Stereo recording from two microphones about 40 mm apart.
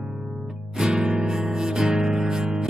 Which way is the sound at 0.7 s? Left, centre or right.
Centre.